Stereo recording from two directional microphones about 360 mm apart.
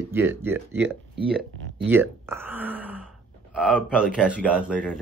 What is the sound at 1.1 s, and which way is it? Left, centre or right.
Speech, right.